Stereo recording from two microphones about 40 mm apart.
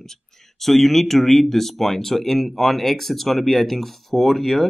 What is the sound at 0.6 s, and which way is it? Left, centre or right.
Speech, centre.